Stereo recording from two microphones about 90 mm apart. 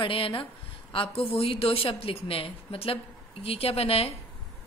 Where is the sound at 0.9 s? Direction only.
90° left.